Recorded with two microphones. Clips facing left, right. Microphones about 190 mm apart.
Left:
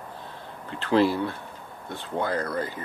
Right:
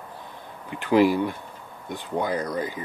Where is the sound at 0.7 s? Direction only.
15° right (ahead or behind).